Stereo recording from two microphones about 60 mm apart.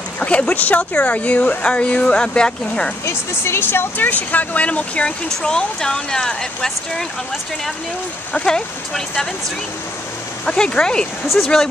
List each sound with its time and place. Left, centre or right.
0.2 s speech: left
3.1 s speech: left
4.1 s speech: left; by 7.1 s centre
8.3 s speech: centre
10.4 s speech: centre